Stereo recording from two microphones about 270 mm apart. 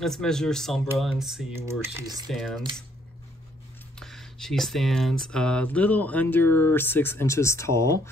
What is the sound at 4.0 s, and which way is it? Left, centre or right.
Speech, centre.